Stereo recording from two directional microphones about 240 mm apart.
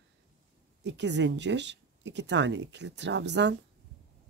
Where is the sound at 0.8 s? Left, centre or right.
Right.